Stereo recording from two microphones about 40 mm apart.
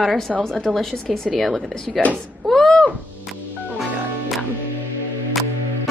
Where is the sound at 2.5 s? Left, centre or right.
Centre.